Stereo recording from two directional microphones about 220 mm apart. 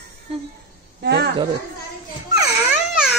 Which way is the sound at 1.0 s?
50° right (ahead or behind).